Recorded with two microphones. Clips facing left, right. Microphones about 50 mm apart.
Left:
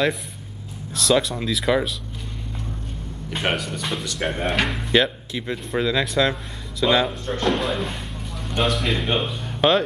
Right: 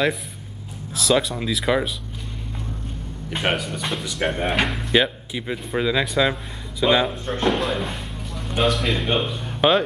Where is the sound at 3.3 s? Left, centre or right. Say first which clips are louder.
Right 1 dB; centre.